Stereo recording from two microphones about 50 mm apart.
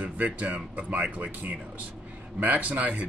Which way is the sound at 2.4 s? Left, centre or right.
Right.